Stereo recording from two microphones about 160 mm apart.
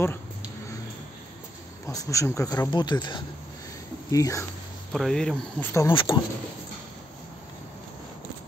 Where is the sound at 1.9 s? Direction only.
20° left (ahead or behind).